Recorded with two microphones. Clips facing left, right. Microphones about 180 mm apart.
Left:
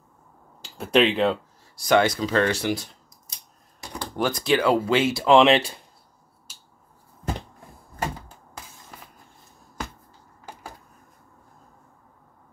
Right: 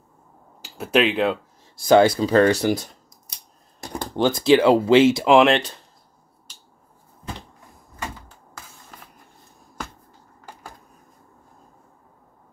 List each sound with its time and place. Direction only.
0.7 s speech: 5° right (ahead or behind)
1.9 s speech: 30° right (ahead or behind)
4.2 s speech: 25° right (ahead or behind)
5.3 s speech: centre (ahead or behind)
6.5 s finger snapping: 5° left (ahead or behind)